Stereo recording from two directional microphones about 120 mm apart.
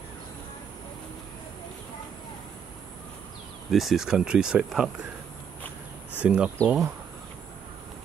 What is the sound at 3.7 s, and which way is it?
Speech, centre (ahead or behind).